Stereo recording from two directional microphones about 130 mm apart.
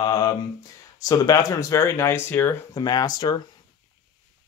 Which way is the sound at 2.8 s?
30° left (ahead or behind).